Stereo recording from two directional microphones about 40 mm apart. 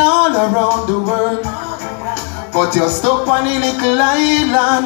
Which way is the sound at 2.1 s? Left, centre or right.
Right.